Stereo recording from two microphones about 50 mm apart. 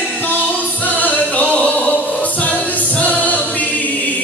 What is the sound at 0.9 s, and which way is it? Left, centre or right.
Music, left.